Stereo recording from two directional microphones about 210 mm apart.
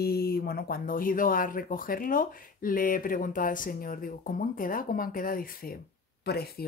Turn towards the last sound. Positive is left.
turn(degrees=50)  # may be behind; listen again after turning